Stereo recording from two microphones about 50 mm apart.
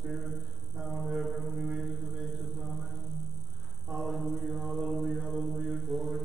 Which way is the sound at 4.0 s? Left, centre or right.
Centre.